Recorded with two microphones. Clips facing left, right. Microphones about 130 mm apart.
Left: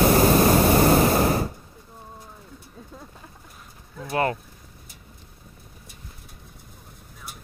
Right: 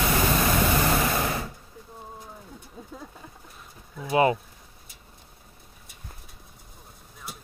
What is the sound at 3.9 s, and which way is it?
Vehicle, 10° right (ahead or behind).